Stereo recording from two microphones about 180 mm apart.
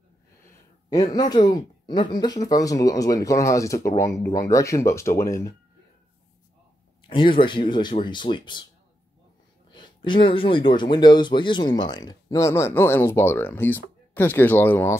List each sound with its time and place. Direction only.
0.5 s a sound: 20° left (ahead or behind)
1.3 s speech: 25° left (ahead or behind)
7.1 s speech: 30° left (ahead or behind)
9.7 s speech: 25° left (ahead or behind)